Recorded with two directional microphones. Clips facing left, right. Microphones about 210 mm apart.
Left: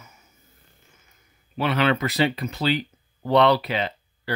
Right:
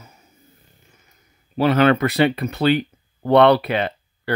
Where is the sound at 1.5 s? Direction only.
40° right (ahead or behind); by 4.3 s 60° right (ahead or behind).